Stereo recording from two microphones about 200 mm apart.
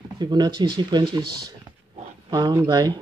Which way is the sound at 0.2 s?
20° right (ahead or behind).